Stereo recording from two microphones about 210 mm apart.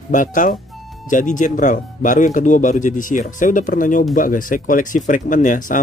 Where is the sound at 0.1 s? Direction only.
40° left (ahead or behind).